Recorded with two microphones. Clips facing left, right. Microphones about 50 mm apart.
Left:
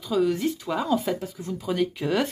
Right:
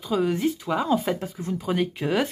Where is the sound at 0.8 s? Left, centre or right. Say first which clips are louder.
Even; right.